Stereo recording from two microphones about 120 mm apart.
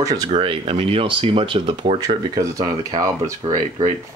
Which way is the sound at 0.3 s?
50° right (ahead or behind).